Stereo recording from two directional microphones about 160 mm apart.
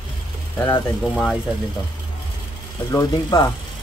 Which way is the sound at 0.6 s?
15° left (ahead or behind).